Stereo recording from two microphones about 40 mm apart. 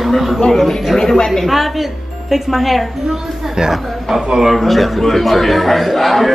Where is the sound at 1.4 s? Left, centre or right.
Centre.